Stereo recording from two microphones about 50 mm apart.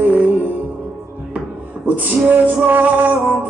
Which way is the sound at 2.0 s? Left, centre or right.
Right.